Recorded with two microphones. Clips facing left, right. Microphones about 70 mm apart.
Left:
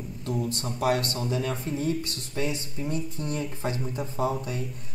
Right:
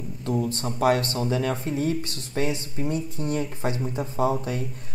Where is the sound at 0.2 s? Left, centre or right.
Right.